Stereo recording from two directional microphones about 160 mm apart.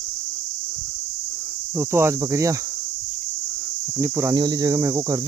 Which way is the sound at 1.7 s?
15° right (ahead or behind).